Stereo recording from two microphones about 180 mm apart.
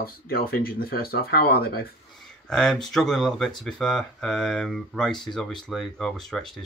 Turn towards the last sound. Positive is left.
turn(degrees=0)  # may be behind; listen again after turning